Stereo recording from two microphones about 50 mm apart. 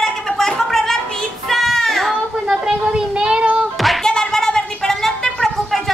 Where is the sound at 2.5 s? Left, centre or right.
Centre.